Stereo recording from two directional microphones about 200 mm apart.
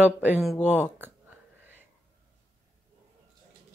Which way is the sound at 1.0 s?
10° right (ahead or behind).